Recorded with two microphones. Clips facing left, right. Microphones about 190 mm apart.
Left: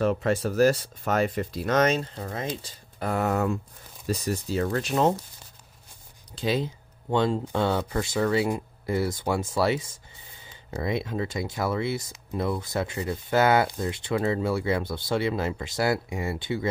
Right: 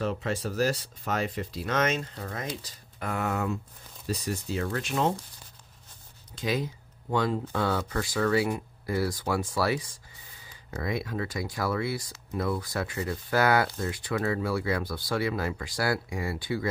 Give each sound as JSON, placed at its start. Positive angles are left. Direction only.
{"t": 0.0, "sound": "speech", "side_deg": 55}
{"t": 2.1, "sound": "speech", "side_deg": 25}
{"t": 6.3, "sound": "speech", "side_deg": 30}